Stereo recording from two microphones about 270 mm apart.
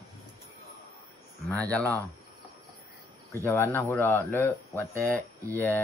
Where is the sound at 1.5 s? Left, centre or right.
Centre.